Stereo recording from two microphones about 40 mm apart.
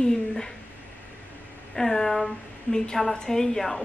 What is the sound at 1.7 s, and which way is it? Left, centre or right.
A man's voice, centre.